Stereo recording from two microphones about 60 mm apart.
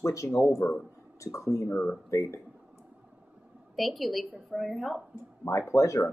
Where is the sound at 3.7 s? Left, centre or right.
Centre.